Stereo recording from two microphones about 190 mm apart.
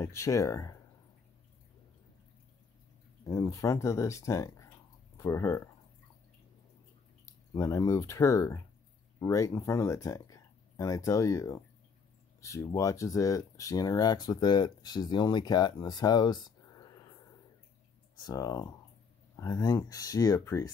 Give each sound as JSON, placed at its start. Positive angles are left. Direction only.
{"t": 0.0, "sound": "speech", "side_deg": 15}
{"t": 3.3, "sound": "speech", "side_deg": 15}
{"t": 7.2, "sound": "speech", "side_deg": 15}
{"t": 18.1, "sound": "speech", "side_deg": 20}